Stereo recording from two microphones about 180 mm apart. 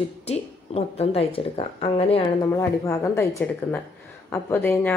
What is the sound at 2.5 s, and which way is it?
Speech, 15° left (ahead or behind).